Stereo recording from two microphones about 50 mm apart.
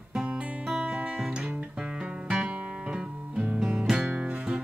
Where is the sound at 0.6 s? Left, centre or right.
Centre.